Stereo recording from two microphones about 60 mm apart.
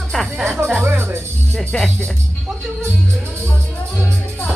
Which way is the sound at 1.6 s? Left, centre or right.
Centre.